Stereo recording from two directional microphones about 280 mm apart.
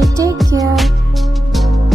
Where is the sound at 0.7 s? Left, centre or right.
Centre.